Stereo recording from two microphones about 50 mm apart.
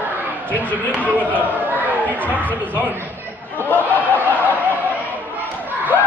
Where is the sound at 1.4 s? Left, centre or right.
Right.